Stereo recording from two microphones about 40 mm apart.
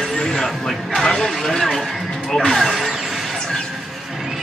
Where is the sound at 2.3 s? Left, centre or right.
Centre.